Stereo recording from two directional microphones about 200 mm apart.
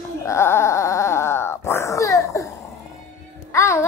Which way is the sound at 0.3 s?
15° left (ahead or behind).